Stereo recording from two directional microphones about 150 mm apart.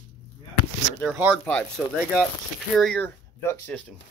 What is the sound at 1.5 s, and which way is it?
Speech, 10° left (ahead or behind).